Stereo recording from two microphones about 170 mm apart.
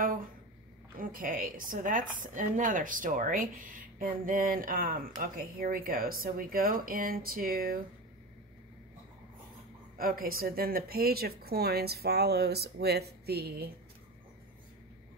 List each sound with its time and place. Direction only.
0.9 s a woman's voice: 55° right (ahead or behind)
9.9 s speech: 60° right (ahead or behind)